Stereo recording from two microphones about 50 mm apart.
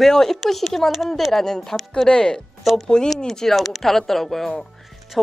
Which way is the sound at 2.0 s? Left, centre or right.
Centre.